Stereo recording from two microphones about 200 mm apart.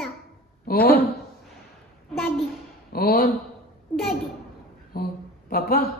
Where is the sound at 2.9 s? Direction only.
45° left (ahead or behind).